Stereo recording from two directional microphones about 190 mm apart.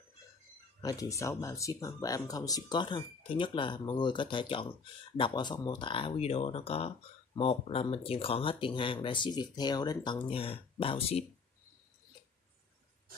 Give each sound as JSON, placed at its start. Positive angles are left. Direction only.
{"t": 0.7, "sound": "speech", "side_deg": 20}